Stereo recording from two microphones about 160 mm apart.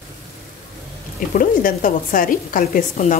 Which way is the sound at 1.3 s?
60° left (ahead or behind).